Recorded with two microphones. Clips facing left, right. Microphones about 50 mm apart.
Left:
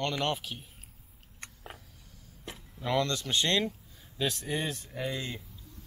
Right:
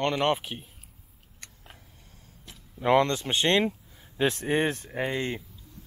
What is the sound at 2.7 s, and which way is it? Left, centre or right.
Speech, right.